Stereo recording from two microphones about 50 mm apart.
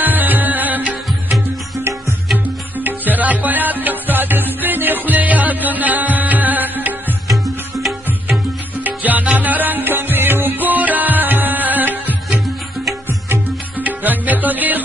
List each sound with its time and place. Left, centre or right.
0.0 s music: right
2.3 s music: right
8.8 s music: right
13.7 s music: right